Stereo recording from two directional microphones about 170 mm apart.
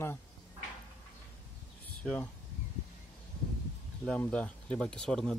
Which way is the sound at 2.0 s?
5° left (ahead or behind).